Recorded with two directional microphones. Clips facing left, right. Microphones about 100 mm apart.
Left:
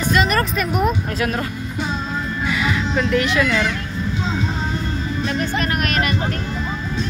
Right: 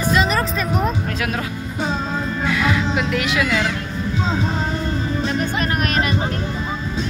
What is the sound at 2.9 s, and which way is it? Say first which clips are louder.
Speech: left 2 dB; 5° right (ahead or behind).